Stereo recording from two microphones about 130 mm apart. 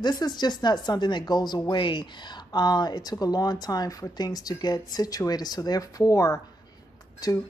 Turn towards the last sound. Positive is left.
turn(degrees=30)  # may be behind; listen again after turning